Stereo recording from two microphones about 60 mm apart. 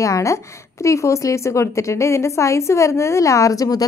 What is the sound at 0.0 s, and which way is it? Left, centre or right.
A woman's voice, left.